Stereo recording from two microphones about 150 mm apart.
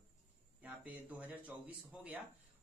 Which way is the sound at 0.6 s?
10° right (ahead or behind).